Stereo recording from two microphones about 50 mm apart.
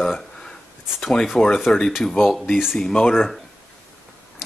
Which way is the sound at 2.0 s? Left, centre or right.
Centre.